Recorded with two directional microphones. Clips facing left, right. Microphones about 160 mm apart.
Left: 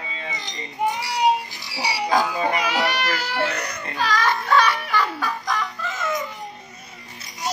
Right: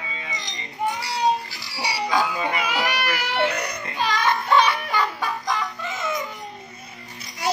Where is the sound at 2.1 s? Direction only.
40° left (ahead or behind).